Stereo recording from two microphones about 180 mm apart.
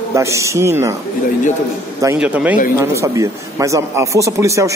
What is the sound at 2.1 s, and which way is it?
Speech, 10° right (ahead or behind).